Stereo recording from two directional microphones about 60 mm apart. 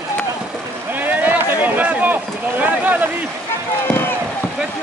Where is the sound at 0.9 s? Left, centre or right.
Right.